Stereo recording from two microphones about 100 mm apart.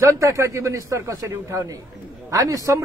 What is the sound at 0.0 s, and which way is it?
A man's voice, 30° right (ahead or behind).